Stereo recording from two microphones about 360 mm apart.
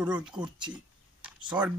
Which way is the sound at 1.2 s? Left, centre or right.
Centre.